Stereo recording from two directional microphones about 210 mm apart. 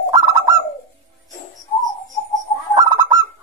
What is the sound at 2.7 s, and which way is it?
Fowl, 15° right (ahead or behind).